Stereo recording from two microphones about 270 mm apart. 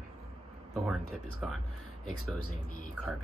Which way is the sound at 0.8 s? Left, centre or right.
Centre.